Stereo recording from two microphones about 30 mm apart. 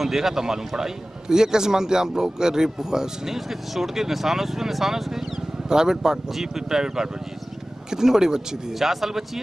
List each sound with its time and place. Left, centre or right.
0.0 s a man's voice: centre
3.3 s a man's voice: centre
8.7 s speech: centre